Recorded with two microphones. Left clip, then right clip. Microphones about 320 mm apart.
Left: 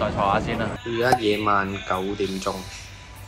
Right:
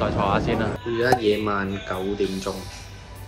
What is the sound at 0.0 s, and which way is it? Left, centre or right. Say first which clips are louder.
Speech: left 1 dB; centre.